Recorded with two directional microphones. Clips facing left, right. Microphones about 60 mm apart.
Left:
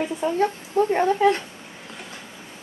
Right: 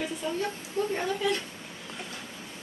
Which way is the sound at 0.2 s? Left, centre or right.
Left.